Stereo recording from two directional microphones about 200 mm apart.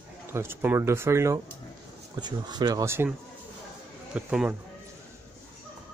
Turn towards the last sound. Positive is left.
turn(degrees=-5)  # may be behind; listen again after turning